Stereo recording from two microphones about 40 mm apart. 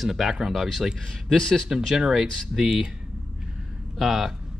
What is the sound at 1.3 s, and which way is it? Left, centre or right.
Speech, centre.